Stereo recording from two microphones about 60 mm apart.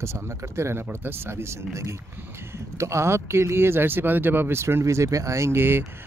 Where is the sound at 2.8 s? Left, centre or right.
Right.